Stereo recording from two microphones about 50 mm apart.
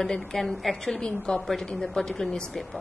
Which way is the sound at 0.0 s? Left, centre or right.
Centre.